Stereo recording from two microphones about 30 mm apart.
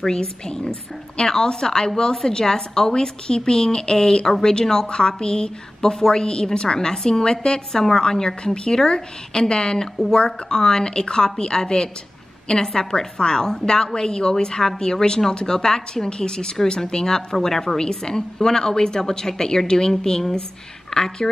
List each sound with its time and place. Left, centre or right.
0.0 s a woman's voice: centre
7.7 s a woman's voice: centre